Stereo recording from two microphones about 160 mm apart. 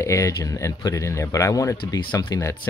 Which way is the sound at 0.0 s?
20° left (ahead or behind).